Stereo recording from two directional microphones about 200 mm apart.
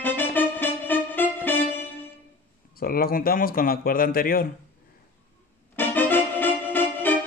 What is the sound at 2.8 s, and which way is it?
Speech, 45° left (ahead or behind).